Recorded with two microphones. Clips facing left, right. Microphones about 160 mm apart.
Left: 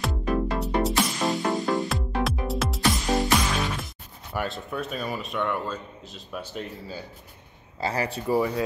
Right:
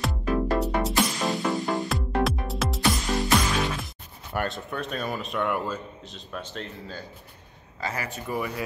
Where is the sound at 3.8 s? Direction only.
Centre (ahead or behind).